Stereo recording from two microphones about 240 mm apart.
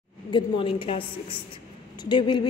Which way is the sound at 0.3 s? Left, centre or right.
Left.